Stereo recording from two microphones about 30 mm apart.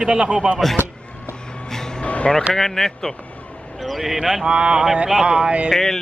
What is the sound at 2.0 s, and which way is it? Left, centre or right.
Music, left.